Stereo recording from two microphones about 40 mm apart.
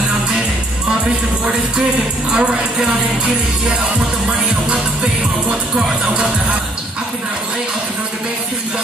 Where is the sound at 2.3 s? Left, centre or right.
Right.